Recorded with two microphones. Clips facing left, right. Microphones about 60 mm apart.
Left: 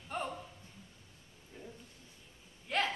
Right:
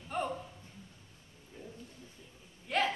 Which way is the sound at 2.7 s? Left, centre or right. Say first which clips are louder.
Right 2 dB; centre.